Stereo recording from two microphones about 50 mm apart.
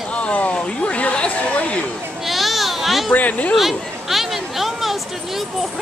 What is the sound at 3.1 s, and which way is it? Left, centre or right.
Speech, left.